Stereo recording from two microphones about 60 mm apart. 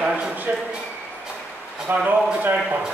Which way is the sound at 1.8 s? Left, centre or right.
Right.